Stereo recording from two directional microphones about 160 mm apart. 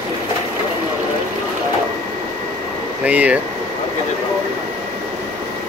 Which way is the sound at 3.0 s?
10° right (ahead or behind).